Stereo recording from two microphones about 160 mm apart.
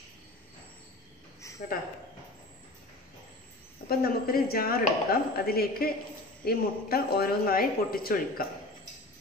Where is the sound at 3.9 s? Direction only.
70° left (ahead or behind).